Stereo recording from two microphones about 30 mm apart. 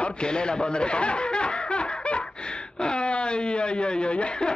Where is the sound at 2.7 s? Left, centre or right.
Left.